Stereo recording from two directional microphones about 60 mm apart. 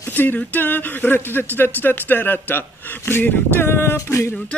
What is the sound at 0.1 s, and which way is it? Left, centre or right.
Speech, left.